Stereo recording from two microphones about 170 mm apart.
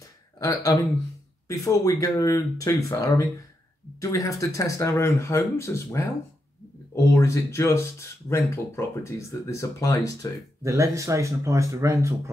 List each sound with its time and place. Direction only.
0.4 s speech: 20° left (ahead or behind)
7.2 s speech: 15° left (ahead or behind)
10.6 s speech: 20° right (ahead or behind)